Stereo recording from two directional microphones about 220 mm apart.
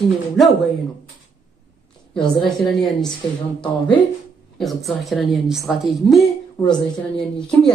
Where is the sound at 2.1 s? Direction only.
20° left (ahead or behind).